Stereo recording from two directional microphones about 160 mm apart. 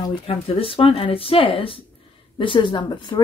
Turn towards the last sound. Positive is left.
turn(degrees=30)  # may be behind; listen again after turning